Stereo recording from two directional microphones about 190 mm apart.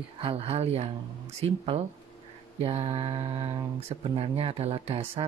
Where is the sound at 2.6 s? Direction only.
30° right (ahead or behind).